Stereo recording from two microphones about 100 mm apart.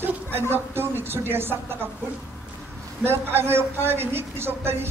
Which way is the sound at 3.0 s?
25° right (ahead or behind).